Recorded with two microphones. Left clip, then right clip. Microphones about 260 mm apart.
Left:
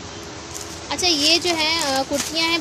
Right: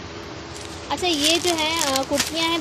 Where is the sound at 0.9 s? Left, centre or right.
Centre.